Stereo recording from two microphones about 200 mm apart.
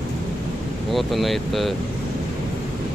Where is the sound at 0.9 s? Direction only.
Centre (ahead or behind).